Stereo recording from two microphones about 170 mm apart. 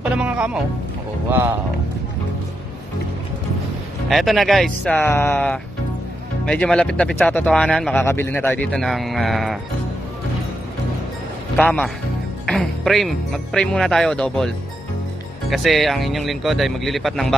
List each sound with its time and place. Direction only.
0.0 s music: 5° right (ahead or behind)
4.1 s speech: centre (ahead or behind)
11.5 s speech: 5° left (ahead or behind)
15.5 s speech: centre (ahead or behind)